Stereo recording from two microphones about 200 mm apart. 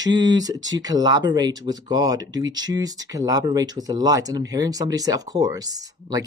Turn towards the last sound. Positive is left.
turn(degrees=-20)  # may be behind; listen again after turning